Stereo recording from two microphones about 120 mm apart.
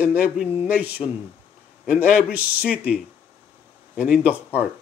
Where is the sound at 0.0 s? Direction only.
10° right (ahead or behind).